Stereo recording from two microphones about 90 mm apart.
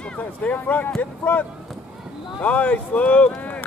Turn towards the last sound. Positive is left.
turn(degrees=15)  # may be behind; listen again after turning